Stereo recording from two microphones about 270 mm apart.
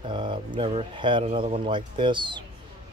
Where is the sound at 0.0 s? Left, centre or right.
Centre.